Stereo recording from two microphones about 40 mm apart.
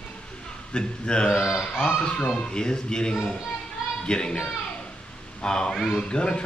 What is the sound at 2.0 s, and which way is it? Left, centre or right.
Speech, centre.